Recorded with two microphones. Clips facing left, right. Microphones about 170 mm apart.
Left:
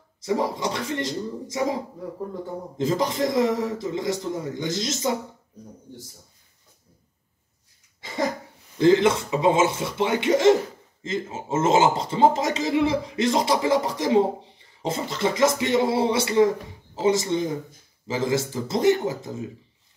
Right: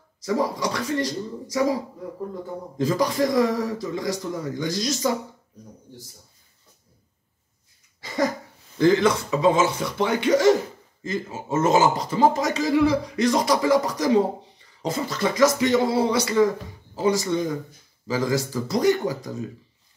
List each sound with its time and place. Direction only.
0.2 s a man's voice: 25° left (ahead or behind)
2.8 s a man's voice: 25° left (ahead or behind)
8.7 s a man's voice: 20° left (ahead or behind)